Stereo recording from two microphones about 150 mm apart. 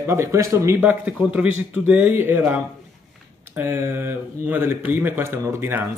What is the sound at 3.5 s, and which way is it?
Speech, 15° right (ahead or behind).